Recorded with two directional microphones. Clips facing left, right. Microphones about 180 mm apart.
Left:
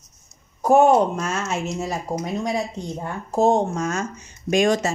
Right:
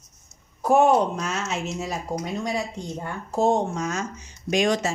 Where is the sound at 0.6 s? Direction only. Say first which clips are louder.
Left 3 dB; 45° left (ahead or behind).